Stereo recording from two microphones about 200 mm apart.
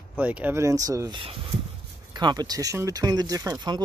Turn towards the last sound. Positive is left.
turn(degrees=-20)  # may be behind; listen again after turning